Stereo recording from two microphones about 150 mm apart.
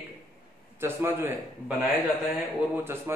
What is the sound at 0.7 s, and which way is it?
A man's voice, 15° right (ahead or behind).